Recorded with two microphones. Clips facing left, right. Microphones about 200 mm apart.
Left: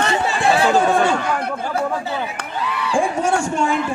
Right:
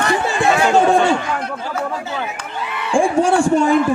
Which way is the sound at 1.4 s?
55° left (ahead or behind).